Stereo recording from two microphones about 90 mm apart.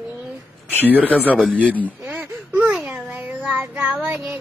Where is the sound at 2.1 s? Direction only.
20° right (ahead or behind).